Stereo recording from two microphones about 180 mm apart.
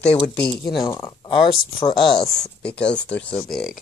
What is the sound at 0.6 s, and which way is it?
Speech, 20° left (ahead or behind).